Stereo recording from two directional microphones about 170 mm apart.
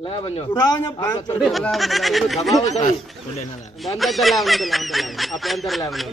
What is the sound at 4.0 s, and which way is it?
A man's voice, centre (ahead or behind).